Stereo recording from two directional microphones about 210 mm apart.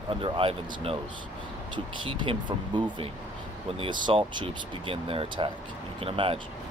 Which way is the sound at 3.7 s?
25° right (ahead or behind).